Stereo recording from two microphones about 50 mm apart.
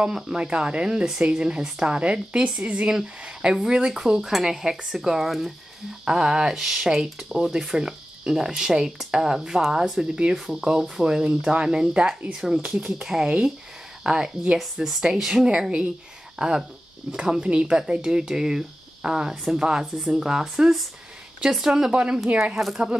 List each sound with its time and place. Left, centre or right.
0.0 s speech: centre
13.0 s speech: centre
22.4 s speech: centre